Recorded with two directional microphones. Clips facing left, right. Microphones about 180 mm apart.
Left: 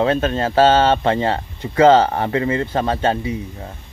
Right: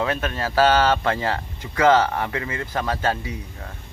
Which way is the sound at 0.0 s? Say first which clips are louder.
Left 7 dB; 30° left (ahead or behind).